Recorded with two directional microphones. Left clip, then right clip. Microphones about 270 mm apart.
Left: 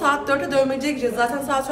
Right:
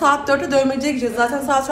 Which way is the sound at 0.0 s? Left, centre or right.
Centre.